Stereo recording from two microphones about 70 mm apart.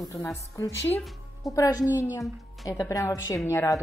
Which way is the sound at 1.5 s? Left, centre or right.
Left.